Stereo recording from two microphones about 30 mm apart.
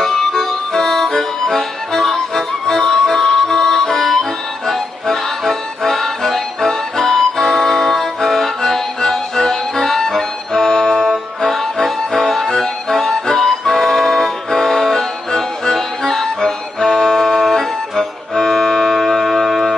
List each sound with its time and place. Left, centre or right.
0.0 s music: centre
11.4 s music: centre
19.0 s music: centre